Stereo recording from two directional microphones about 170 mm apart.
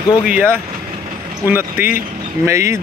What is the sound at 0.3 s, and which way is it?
Speech, 10° right (ahead or behind).